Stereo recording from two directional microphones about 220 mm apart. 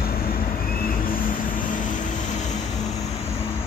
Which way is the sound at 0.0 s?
40° left (ahead or behind).